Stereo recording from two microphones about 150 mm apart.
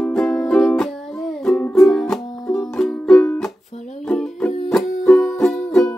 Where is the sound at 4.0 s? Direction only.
5° left (ahead or behind).